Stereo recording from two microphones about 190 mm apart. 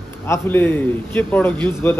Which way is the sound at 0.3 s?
10° left (ahead or behind).